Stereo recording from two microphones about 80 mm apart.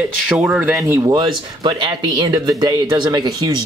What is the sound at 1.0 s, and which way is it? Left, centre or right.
Speech, right.